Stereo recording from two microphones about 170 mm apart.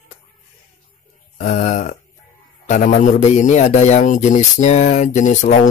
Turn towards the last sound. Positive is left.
turn(degrees=45)  # may be behind; listen again after turning